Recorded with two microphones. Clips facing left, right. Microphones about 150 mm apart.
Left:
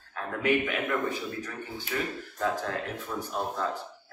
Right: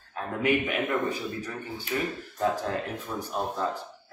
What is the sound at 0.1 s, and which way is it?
A man's voice, 15° right (ahead or behind).